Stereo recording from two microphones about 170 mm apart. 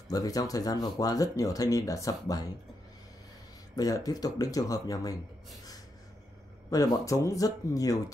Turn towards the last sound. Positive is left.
turn(degrees=20)  # may be behind; listen again after turning